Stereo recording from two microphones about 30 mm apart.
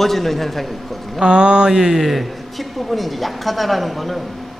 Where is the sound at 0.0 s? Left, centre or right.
Centre.